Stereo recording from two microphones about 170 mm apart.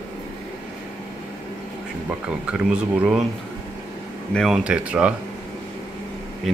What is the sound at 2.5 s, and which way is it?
Speech, 5° right (ahead or behind).